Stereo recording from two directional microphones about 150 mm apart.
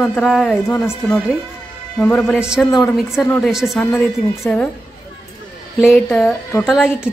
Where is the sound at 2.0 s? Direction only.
5° left (ahead or behind).